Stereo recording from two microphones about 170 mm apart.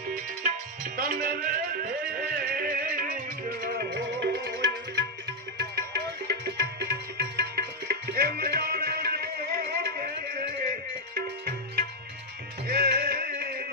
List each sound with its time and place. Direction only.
0.4 s music: 55° right (ahead or behind); by 5.0 s 85° right
5.6 s music: 70° right (ahead or behind)